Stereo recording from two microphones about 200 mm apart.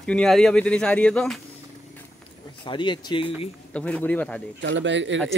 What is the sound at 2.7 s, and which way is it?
Speech, 25° left (ahead or behind).